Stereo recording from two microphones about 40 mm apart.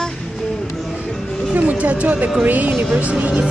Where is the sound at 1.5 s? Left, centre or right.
Right.